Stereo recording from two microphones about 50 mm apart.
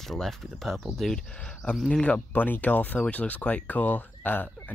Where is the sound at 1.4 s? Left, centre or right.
Left.